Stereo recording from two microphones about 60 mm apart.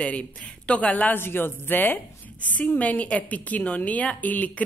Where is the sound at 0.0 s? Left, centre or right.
Left.